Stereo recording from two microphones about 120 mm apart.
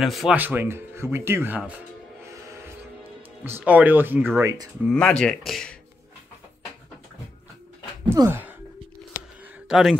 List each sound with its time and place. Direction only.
0.0 s speech: centre (ahead or behind)
0.4 s speech: 15° right (ahead or behind)
3.4 s speech: 15° right (ahead or behind)
4.9 s speech: 10° left (ahead or behind)
8.1 s speech: 20° right (ahead or behind)
9.7 s speech: 5° right (ahead or behind)